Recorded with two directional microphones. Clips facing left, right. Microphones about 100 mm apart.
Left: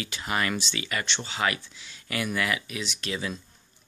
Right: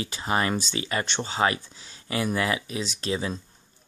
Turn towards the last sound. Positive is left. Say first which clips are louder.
# right 4 dB
turn(degrees=-30)  # may be behind; listen again after turning